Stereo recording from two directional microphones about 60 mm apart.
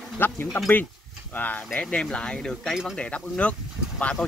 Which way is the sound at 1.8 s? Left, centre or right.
Centre.